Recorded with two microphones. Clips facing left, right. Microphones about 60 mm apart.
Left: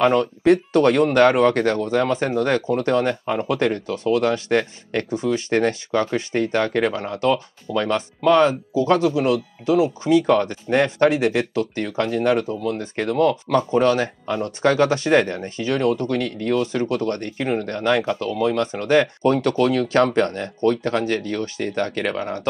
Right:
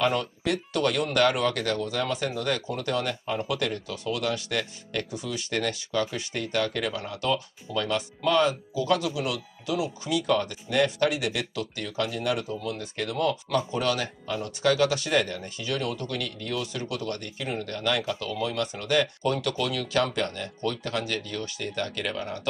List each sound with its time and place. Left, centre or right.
0.0 s speech: left